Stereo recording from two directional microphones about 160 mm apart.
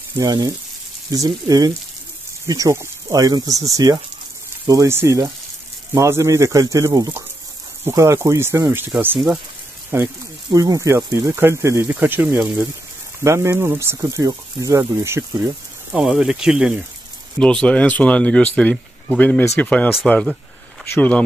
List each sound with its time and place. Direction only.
0.2 s speech: 25° right (ahead or behind)
15.9 s speech: 5° right (ahead or behind)
17.4 s speech: 5° left (ahead or behind)